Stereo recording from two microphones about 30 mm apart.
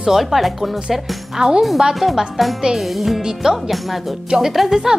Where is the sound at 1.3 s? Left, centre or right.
Right.